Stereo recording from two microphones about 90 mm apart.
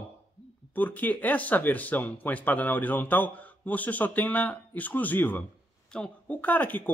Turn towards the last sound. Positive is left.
turn(degrees=20)  # may be behind; listen again after turning